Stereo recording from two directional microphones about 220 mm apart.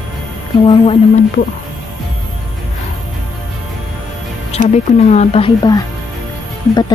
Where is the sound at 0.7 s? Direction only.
25° left (ahead or behind).